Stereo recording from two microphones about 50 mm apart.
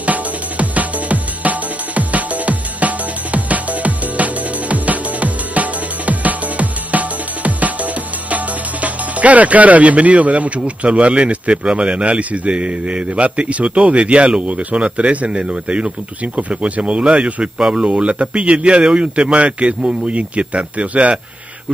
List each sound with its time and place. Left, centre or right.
0.0 s music: right
8.8 s speech: right